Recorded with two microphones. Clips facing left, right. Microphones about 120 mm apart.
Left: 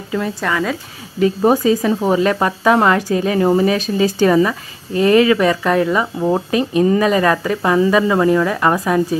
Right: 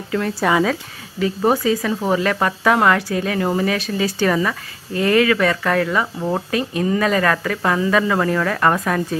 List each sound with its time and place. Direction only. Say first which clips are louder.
0.4 s speech: right 6 dB; 15° right (ahead or behind)
1.4 s speech: left 3 dB; 15° left (ahead or behind)